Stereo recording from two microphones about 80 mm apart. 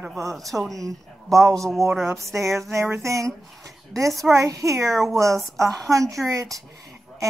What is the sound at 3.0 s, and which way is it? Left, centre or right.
Speech, right.